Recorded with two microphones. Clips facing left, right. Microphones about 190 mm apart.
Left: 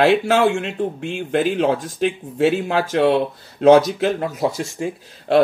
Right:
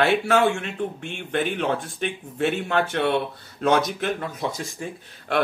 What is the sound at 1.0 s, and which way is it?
Speech, 90° left.